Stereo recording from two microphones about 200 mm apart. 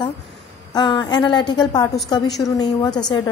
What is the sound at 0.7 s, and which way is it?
A woman's voice, 20° left (ahead or behind).